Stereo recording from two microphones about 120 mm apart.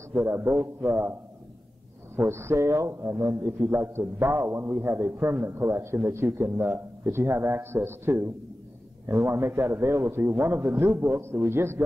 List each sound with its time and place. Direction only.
0.1 s a man's voice: 20° right (ahead or behind)
2.1 s a man's voice: 20° right (ahead or behind)